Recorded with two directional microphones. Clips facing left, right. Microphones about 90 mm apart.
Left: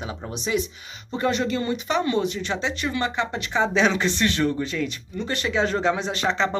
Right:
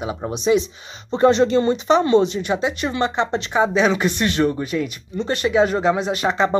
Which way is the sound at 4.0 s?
15° right (ahead or behind).